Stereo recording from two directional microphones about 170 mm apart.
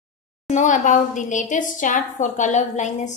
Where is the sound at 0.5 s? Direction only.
45° left (ahead or behind).